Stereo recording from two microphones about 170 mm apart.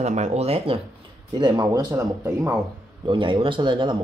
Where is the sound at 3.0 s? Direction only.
30° right (ahead or behind).